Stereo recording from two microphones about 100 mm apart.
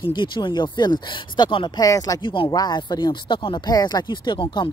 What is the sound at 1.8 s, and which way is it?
Speech, 35° left (ahead or behind).